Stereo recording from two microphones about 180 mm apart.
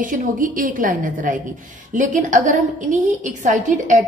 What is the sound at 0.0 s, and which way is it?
A woman's voice, 45° right (ahead or behind).